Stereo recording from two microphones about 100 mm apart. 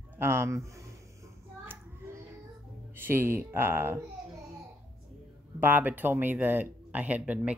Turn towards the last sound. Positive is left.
turn(degrees=-15)  # may be behind; listen again after turning